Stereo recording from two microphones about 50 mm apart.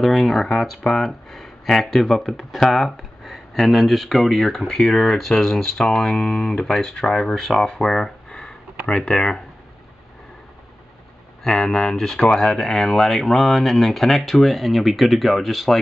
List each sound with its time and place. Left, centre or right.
0.0 s speech: centre
7.6 s speech: left
7.9 s a sound: centre
9.0 s speech: centre
11.4 s speech: centre